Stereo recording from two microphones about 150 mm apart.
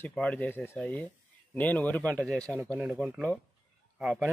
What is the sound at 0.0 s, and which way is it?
Speech, 10° left (ahead or behind).